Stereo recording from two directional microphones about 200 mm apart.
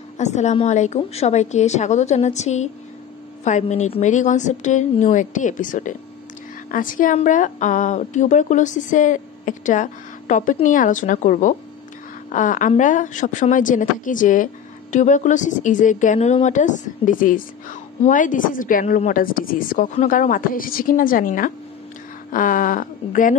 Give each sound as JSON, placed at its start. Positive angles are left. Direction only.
{"t": 0.2, "sound": "a woman's voice", "side_deg": 35}